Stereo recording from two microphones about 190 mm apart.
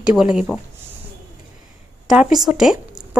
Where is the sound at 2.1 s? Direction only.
5° right (ahead or behind).